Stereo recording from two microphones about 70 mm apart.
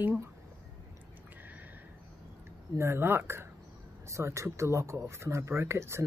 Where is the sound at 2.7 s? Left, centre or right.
Right.